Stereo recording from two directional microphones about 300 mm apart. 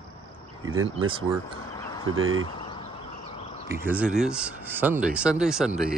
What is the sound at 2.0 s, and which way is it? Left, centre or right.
Speech, right.